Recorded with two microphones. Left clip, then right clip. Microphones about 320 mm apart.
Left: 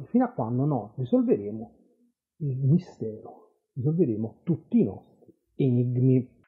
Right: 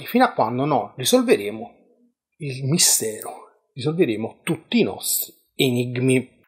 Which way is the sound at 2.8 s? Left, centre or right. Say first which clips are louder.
Right 15 dB; centre.